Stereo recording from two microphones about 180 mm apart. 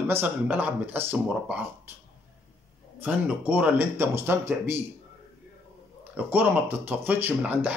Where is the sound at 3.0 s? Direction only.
10° right (ahead or behind).